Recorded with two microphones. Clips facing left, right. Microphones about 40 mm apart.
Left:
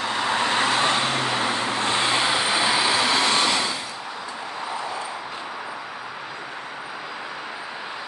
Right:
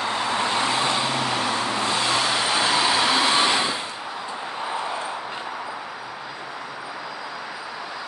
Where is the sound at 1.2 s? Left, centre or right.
Centre.